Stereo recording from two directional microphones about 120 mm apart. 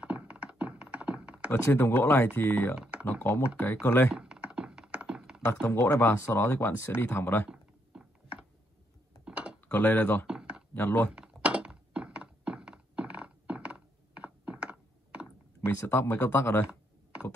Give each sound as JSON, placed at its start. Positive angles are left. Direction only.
{"t": 0.0, "sound": "a sound", "side_deg": -10}
{"t": 1.5, "sound": "speech", "side_deg": 20}
{"t": 2.8, "sound": "typing", "side_deg": -10}
{"t": 3.5, "sound": "speech", "side_deg": 20}
{"t": 4.1, "sound": "thunk", "side_deg": -10}
{"t": 5.7, "sound": "speech", "side_deg": 20}
{"t": 7.4, "sound": "typing", "side_deg": -10}
{"t": 9.2, "sound": "computer keyboard", "side_deg": -10}
{"t": 9.7, "sound": "speech", "side_deg": 15}
{"t": 10.2, "sound": "chopping", "side_deg": -5}
{"t": 10.7, "sound": "speech", "side_deg": 15}
{"t": 11.1, "sound": "thunk", "side_deg": -10}
{"t": 15.6, "sound": "speech", "side_deg": 20}